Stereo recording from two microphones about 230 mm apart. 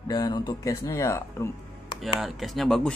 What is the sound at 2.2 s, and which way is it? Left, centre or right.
Speech, centre.